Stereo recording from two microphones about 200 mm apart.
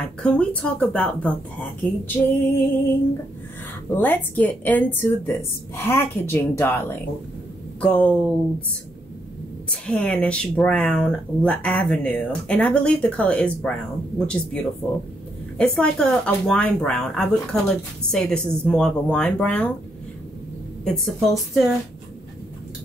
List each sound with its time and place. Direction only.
0.2 s speech: 5° left (ahead or behind)
3.9 s speech: 10° left (ahead or behind)
7.8 s speech: 5° left (ahead or behind)
9.7 s speech: 5° left (ahead or behind)
20.8 s speech: centre (ahead or behind)